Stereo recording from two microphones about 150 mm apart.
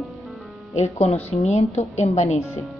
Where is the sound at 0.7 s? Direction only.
45° left (ahead or behind).